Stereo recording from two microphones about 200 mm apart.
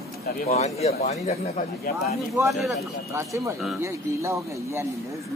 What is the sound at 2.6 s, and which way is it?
Speech, 15° right (ahead or behind).